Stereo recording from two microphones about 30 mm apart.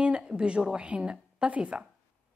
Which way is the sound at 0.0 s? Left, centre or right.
Right.